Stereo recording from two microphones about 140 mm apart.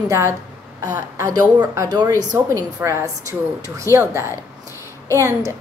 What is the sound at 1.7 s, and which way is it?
Speech, 25° right (ahead or behind).